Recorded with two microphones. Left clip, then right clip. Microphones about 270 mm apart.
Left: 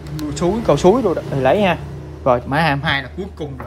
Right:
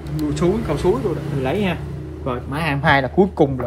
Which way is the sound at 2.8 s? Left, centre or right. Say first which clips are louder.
Right 6 dB; centre.